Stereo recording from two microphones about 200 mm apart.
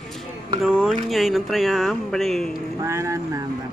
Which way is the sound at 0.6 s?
5° right (ahead or behind).